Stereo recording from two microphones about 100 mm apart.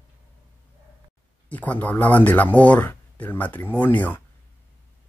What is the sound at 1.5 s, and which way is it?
Speech, 15° left (ahead or behind).